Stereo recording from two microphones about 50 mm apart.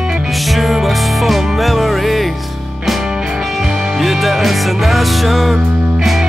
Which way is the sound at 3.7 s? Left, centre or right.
Centre.